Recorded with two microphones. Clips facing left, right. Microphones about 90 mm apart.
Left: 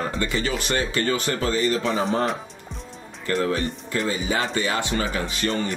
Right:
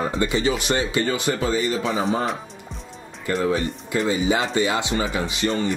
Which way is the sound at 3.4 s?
10° right (ahead or behind).